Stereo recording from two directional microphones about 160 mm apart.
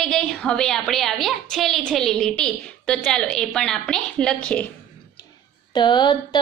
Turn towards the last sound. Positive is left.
turn(degrees=30)  # may be behind; listen again after turning